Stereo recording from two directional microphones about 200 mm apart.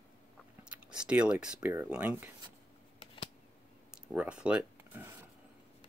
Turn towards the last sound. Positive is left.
turn(degrees=-10)  # may be behind; listen again after turning